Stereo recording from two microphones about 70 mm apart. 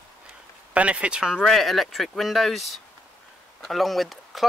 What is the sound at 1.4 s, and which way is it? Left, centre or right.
Speech, centre.